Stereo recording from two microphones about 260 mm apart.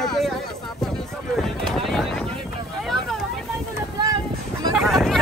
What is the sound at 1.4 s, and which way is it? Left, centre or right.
Speech, centre.